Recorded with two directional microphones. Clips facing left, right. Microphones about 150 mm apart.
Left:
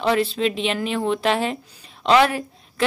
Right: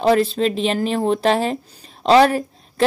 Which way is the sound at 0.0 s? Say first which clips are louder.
Right 4 dB; 40° right (ahead or behind).